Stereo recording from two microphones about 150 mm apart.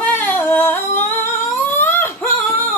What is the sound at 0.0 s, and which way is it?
Humming, 10° left (ahead or behind).